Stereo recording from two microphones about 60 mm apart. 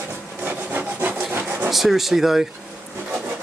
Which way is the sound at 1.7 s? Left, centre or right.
Centre.